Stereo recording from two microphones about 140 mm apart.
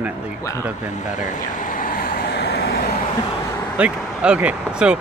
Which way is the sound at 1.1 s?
65° left (ahead or behind).